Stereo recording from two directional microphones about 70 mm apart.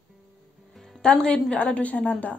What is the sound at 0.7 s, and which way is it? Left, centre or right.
Music, centre.